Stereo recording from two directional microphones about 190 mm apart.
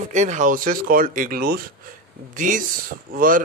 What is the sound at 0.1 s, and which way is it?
Speech, 40° right (ahead or behind).